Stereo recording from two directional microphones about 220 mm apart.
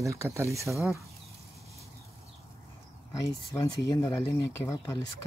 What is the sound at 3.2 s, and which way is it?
Speech, 15° left (ahead or behind).